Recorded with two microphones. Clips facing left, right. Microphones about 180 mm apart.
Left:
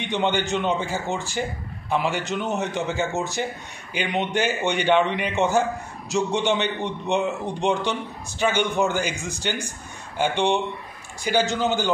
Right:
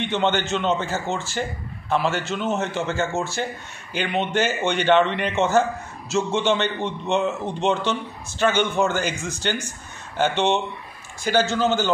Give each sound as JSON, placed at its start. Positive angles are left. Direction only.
{"t": 0.0, "sound": "a man's voice", "side_deg": 15}